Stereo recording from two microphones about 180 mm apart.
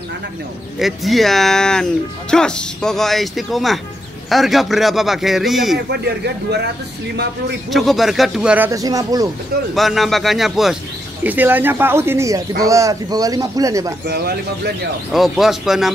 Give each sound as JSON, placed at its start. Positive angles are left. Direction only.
{"t": 0.7, "sound": "speech", "side_deg": 0}
{"t": 5.9, "sound": "a man's voice", "side_deg": -65}
{"t": 7.7, "sound": "speech", "side_deg": 0}
{"t": 9.8, "sound": "a man's voice", "side_deg": 0}
{"t": 14.0, "sound": "speech", "side_deg": -65}
{"t": 15.1, "sound": "speech", "side_deg": 0}